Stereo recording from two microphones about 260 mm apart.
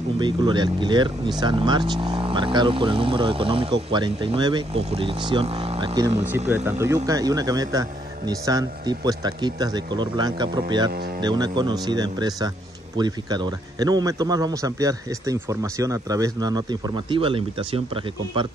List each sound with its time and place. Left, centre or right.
0.2 s speech: centre